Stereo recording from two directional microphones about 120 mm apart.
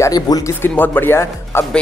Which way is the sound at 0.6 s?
15° left (ahead or behind).